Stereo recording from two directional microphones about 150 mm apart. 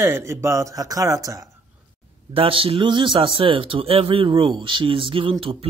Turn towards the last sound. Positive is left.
turn(degrees=-35)  # may be behind; listen again after turning